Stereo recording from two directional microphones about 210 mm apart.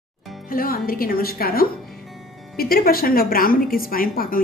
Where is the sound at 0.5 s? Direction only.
45° left (ahead or behind).